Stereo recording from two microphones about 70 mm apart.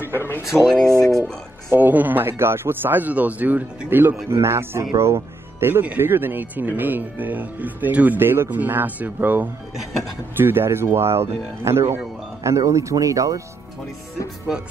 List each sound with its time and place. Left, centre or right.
0.7 s speech: centre
1.7 s speech: right
4.3 s speech: right
12.4 s speech: right